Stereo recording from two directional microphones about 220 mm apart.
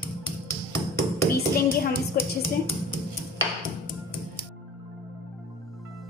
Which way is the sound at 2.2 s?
40° left (ahead or behind).